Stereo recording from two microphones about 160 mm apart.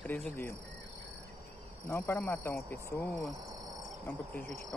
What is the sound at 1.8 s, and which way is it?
Speech, 15° left (ahead or behind).